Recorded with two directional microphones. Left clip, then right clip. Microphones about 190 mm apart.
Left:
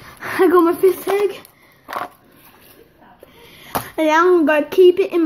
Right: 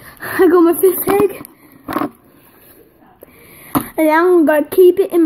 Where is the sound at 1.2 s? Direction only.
35° right (ahead or behind).